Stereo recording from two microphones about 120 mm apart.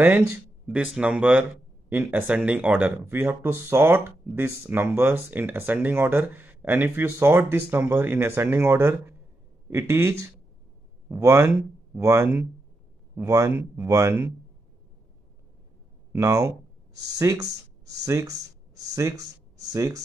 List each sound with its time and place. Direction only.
0.0 s speech: 15° right (ahead or behind)
13.5 s speech: 15° right (ahead or behind)
13.8 s speech: 25° right (ahead or behind)
16.1 s speech: 30° right (ahead or behind)
18.9 s a sound: 30° right (ahead or behind)